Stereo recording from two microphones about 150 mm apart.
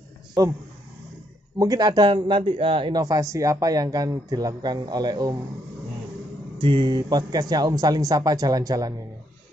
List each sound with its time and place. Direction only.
0.4 s speech: 25° right (ahead or behind)
1.6 s speech: 25° right (ahead or behind)
6.6 s speech: 35° right (ahead or behind)